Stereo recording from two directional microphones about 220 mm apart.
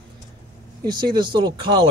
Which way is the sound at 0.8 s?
20° right (ahead or behind).